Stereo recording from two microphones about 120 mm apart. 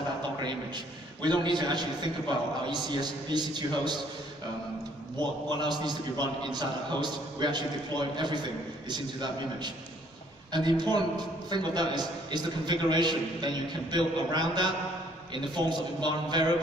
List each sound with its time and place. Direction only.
0.4 s a man's voice: 40° right (ahead or behind)
5.5 s a man's voice: 35° right (ahead or behind)